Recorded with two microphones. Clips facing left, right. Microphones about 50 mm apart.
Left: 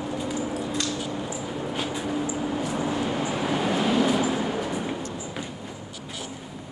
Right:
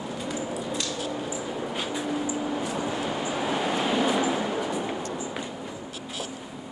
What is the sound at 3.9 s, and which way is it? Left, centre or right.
Vehicle, centre.